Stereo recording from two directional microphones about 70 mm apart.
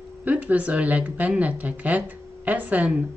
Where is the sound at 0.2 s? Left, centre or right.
Right.